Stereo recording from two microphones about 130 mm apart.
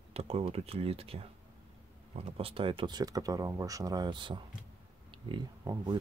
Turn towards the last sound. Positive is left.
turn(degrees=-35)  # may be behind; listen again after turning